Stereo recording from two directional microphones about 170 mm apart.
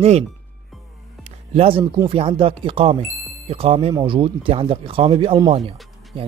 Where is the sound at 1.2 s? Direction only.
35° right (ahead or behind).